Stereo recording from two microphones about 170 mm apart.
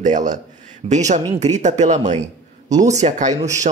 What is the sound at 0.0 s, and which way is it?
A man's voice, 45° right (ahead or behind).